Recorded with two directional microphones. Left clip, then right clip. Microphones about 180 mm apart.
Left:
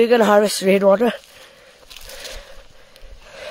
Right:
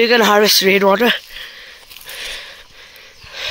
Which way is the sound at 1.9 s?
Centre (ahead or behind).